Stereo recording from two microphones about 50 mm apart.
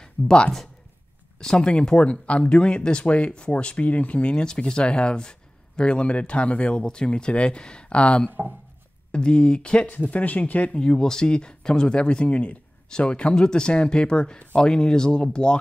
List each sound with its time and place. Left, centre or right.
0.0 s a sound: centre
1.4 s speech: centre
8.3 s speech: right
9.1 s speech: centre
9.8 s speech: left
10.8 s speech: centre